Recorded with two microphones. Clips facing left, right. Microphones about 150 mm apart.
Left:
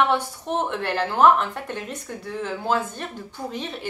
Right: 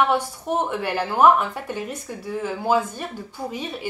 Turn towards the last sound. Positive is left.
turn(degrees=-5)  # may be behind; listen again after turning